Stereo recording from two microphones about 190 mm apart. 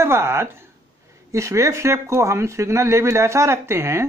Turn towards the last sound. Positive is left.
turn(degrees=-15)  # may be behind; listen again after turning